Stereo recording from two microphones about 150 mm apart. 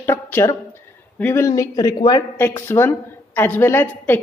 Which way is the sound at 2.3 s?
15° left (ahead or behind).